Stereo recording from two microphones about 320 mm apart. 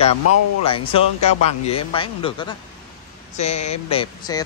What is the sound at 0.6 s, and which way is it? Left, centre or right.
Speech, centre.